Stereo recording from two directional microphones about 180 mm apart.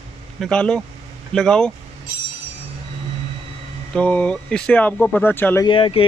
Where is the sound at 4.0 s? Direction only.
5° left (ahead or behind).